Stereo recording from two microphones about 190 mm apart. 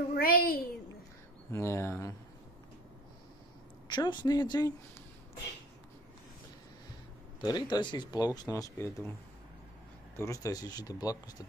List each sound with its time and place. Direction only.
0.1 s a woman's voice: 50° left (ahead or behind)
1.5 s speech: 15° left (ahead or behind)
3.8 s speech: 25° left (ahead or behind)
7.3 s speech: 20° left (ahead or behind)
10.1 s speech: 15° left (ahead or behind)